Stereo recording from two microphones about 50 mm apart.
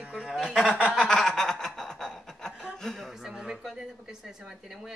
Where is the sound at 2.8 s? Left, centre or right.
Centre.